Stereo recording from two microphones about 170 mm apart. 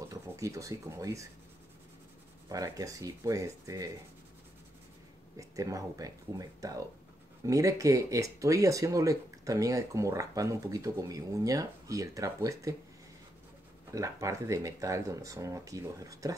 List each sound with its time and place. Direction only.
0.1 s speech: 20° right (ahead or behind)
2.5 s speech: 20° right (ahead or behind)
5.4 s speech: 20° right (ahead or behind)
13.9 s speech: 20° right (ahead or behind)